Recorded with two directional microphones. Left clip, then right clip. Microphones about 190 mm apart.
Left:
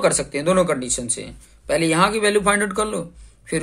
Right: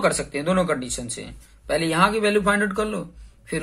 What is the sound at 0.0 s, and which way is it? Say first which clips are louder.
Speech: left 3 dB; 40° left (ahead or behind).